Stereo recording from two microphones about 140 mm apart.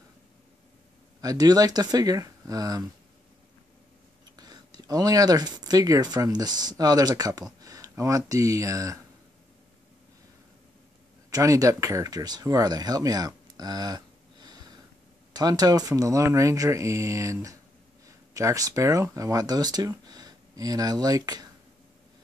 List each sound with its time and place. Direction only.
1.2 s speech: 25° right (ahead or behind)
4.4 s speech: 30° right (ahead or behind)
11.2 s speech: 25° right (ahead or behind)